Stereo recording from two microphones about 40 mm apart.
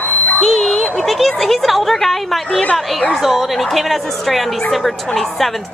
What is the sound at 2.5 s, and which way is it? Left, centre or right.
Speech, left.